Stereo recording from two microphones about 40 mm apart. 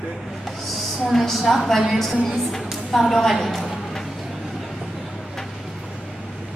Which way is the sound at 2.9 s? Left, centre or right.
Centre.